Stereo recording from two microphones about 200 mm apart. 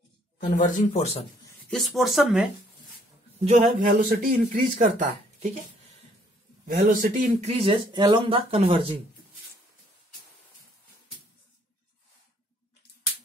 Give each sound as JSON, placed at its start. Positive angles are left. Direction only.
{"t": 0.4, "sound": "speech", "side_deg": 40}
{"t": 1.7, "sound": "speech", "side_deg": 0}
{"t": 3.6, "sound": "speech", "side_deg": -45}
{"t": 6.8, "sound": "speech", "side_deg": -40}